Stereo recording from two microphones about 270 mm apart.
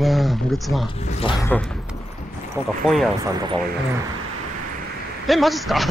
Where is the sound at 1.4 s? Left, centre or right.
Centre.